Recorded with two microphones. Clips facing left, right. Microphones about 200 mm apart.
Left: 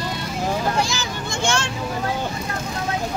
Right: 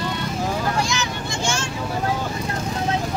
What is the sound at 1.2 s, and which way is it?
Vehicle, 60° left (ahead or behind).